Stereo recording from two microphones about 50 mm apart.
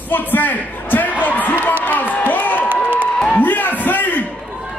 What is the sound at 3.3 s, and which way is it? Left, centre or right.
Speech, left.